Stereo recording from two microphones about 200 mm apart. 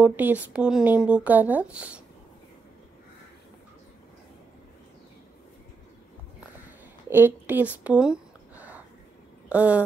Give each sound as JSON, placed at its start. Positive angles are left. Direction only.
{"t": 0.0, "sound": "speech", "side_deg": -10}
{"t": 7.1, "sound": "a sound", "side_deg": -10}
{"t": 9.5, "sound": "speech", "side_deg": -5}